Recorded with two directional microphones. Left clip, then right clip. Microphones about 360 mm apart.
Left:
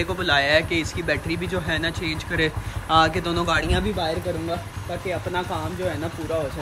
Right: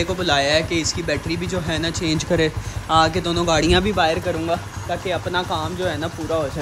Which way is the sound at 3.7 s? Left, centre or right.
Centre.